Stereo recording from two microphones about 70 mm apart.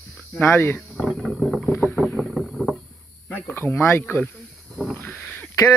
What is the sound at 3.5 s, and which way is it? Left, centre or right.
Speech, left.